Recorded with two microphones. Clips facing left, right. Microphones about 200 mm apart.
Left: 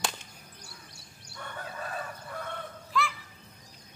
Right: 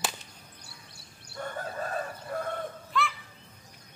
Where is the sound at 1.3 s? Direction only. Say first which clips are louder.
Right 5 dB; 40° right (ahead or behind).